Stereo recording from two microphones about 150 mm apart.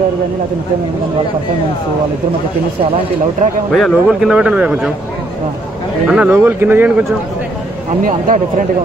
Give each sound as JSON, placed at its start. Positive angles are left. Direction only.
{"t": 3.7, "sound": "a man's voice", "side_deg": 0}
{"t": 6.0, "sound": "speech", "side_deg": -5}
{"t": 8.0, "sound": "speech", "side_deg": -65}